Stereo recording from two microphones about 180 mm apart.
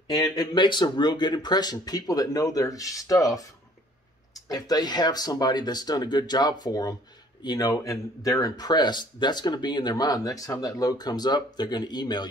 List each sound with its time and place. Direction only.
0.1 s speech: 20° left (ahead or behind)
4.5 s speech: 20° left (ahead or behind)